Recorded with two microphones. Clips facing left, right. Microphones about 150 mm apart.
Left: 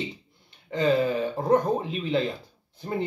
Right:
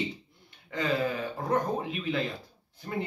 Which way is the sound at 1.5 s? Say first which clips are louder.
Left 6 dB; 25° left (ahead or behind).